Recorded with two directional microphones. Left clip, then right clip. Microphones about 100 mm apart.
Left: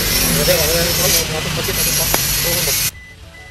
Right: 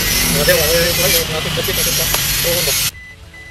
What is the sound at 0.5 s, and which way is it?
Speech, 15° right (ahead or behind).